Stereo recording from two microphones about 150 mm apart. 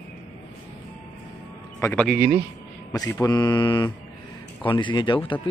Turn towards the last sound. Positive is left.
turn(degrees=30)  # may be behind; listen again after turning